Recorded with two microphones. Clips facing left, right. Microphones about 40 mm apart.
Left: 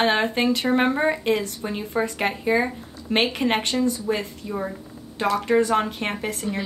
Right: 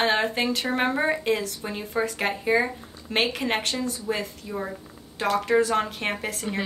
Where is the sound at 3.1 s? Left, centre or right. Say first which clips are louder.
Left 3 dB; left.